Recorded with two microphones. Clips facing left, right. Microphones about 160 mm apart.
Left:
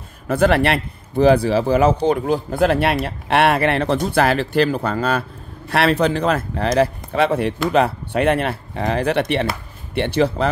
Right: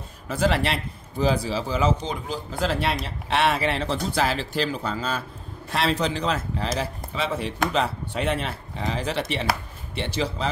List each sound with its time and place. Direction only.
0.3 s speech: 60° left (ahead or behind)